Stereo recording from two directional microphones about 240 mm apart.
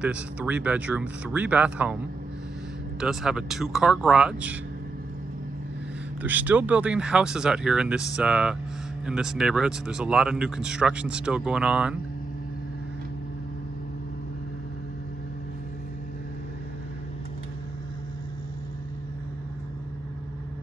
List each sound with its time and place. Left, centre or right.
0.0 s speech: centre
3.0 s speech: centre
6.2 s speech: centre